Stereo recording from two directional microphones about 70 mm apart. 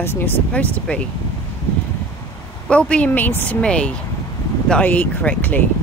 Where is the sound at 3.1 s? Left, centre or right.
Left.